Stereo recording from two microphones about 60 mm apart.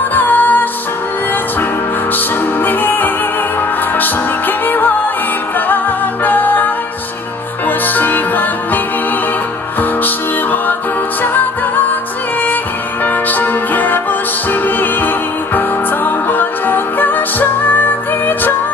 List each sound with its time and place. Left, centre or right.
0.1 s music: left
2.1 s music: left
9.8 s music: left
13.0 s music: left